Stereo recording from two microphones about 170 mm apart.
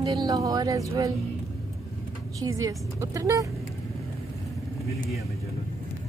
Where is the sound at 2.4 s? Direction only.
20° right (ahead or behind).